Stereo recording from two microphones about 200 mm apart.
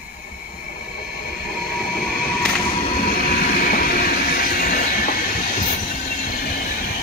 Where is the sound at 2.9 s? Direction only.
45° left (ahead or behind).